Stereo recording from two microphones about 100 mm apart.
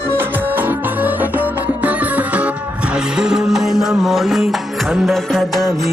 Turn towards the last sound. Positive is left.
turn(degrees=0)  # may be behind; listen again after turning